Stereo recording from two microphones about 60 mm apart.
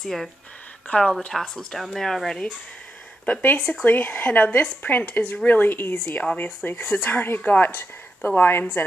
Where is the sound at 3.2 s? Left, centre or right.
Left.